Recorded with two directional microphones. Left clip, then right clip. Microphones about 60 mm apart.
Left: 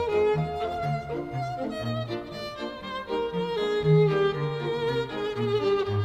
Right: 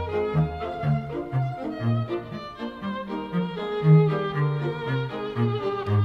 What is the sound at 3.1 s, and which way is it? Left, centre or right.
Music, left.